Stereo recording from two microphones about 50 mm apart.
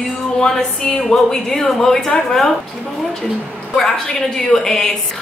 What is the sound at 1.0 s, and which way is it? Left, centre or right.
A woman's voice, centre.